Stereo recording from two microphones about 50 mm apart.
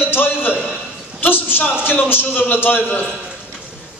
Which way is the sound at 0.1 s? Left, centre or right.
Left.